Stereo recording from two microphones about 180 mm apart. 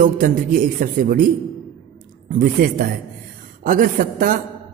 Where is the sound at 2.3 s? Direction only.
50° right (ahead or behind).